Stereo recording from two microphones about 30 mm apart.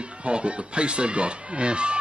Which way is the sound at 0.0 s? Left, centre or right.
Right.